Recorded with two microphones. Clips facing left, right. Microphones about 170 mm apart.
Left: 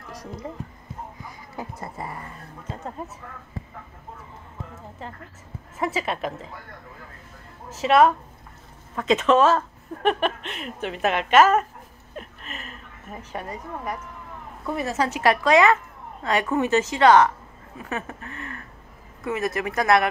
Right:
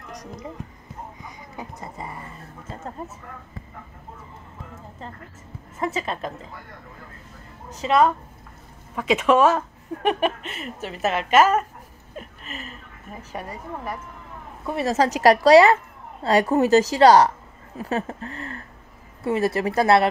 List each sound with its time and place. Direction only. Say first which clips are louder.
5.8 s a woman's voice: left 1 dB; 5° left (ahead or behind)
7.7 s a woman's voice: left 2 dB; 5° left (ahead or behind)
8.9 s a woman's voice: even; 10° right (ahead or behind)
12.2 s a sound: right 1 dB; centre (ahead or behind)
14.8 s a woman's voice: right 5 dB; 35° right (ahead or behind)